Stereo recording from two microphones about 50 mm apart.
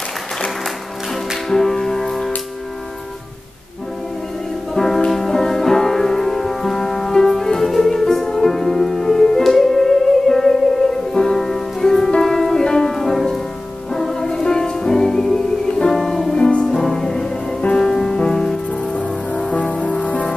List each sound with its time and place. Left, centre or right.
1.5 s music: centre
4.7 s music: centre
16.3 s music: centre
16.6 s music: centre
18.9 s music: left